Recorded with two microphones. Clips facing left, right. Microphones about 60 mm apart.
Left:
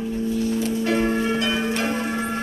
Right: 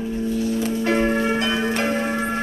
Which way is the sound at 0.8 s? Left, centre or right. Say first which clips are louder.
Right 2 dB; right.